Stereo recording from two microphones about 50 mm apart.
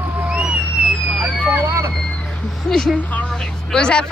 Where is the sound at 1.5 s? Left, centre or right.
Right.